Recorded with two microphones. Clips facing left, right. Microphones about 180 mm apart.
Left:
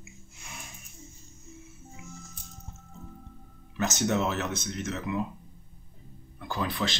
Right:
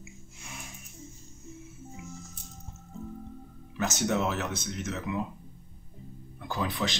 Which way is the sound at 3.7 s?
10° right (ahead or behind).